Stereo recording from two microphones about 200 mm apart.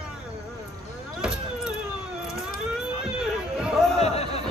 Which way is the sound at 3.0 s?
5° right (ahead or behind).